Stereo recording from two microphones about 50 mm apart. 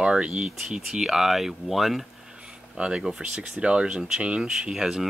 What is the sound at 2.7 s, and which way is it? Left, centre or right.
Speech, centre.